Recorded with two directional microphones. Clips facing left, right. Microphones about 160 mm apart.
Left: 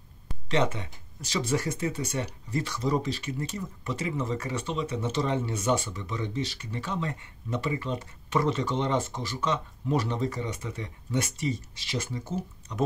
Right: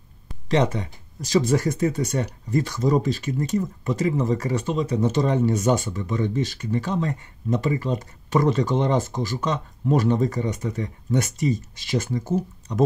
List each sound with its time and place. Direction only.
0.5 s speech: 35° right (ahead or behind)